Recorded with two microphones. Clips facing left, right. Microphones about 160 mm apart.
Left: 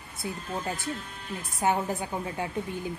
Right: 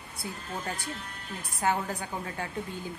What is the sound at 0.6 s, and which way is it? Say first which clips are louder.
A woman's voice: left 3 dB; 25° left (ahead or behind).